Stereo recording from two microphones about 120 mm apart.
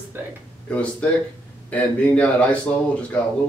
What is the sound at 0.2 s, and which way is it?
Speech, 15° right (ahead or behind).